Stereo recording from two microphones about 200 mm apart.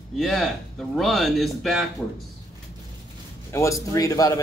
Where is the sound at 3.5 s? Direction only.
15° left (ahead or behind).